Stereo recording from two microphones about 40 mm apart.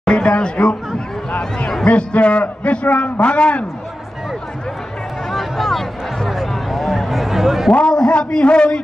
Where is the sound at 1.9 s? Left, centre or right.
Left.